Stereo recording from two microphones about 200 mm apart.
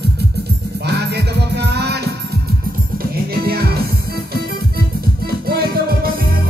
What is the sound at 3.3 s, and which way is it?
Music, 50° right (ahead or behind).